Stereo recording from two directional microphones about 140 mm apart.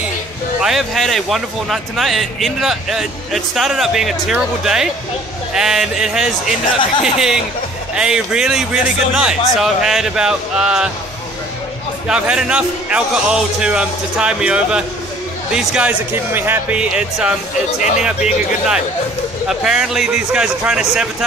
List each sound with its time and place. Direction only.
0.6 s speech: 5° right (ahead or behind)
12.1 s a man's voice: 5° right (ahead or behind)
17.7 s speech: 60° left (ahead or behind)
18.0 s speech: 5° right (ahead or behind)